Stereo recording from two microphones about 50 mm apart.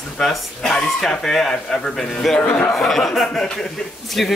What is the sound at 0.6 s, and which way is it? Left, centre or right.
Speech, centre.